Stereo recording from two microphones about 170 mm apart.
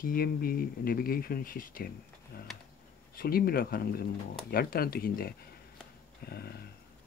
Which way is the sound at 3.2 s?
60° left (ahead or behind).